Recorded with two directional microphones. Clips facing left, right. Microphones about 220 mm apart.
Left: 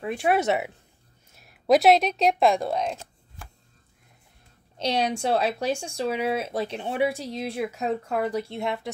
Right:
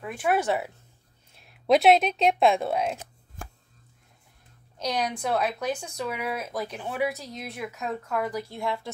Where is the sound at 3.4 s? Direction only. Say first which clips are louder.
Right 5 dB; 45° right (ahead or behind).